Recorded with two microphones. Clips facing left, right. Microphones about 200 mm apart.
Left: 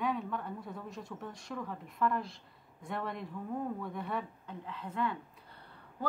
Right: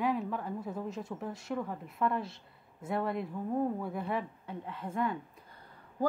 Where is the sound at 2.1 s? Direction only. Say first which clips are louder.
Right 1 dB; 5° right (ahead or behind).